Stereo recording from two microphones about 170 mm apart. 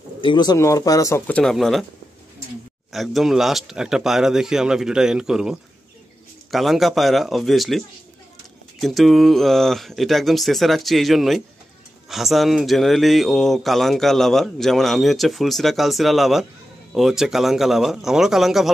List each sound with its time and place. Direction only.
0.2 s speech: 25° left (ahead or behind); by 1.9 s centre (ahead or behind)
2.9 s speech: centre (ahead or behind)
8.8 s speech: centre (ahead or behind)